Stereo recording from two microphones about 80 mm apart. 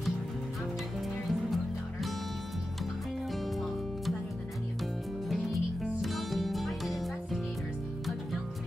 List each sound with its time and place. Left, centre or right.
1.2 s music: centre
3.4 s music: centre
5.3 s music: centre